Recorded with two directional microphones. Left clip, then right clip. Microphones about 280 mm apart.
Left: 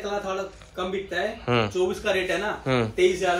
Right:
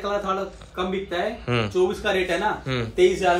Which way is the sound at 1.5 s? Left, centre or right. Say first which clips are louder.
Right 1 dB; centre.